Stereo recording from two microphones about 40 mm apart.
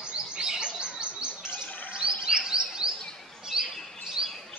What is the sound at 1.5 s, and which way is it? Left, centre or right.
Chirp, left.